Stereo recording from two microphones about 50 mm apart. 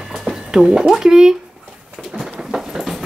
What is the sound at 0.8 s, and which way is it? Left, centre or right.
Speech, centre.